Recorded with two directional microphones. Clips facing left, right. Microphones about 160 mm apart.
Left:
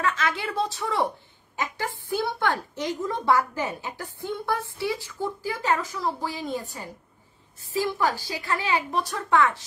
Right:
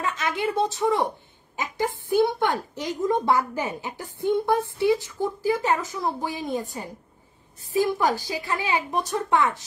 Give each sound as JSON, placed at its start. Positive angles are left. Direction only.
{"t": 0.0, "sound": "a woman's voice", "side_deg": -20}